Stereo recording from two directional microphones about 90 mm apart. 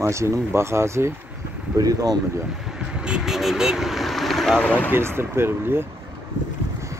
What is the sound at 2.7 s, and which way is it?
Vehicle, 10° right (ahead or behind).